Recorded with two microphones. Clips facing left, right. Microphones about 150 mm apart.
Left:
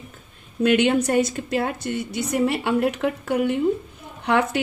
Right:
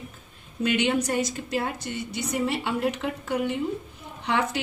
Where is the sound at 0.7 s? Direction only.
55° left (ahead or behind).